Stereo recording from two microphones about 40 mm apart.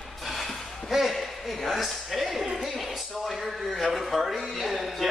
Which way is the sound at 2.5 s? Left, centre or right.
Centre.